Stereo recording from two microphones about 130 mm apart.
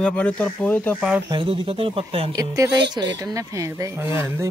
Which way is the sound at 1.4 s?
45° right (ahead or behind).